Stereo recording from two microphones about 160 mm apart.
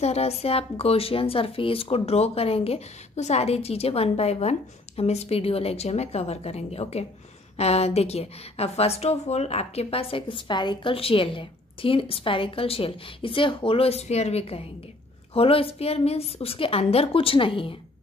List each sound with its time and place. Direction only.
0.0 s speech: 40° left (ahead or behind)